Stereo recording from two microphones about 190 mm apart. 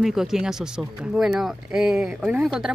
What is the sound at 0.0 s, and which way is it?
Speech, centre (ahead or behind).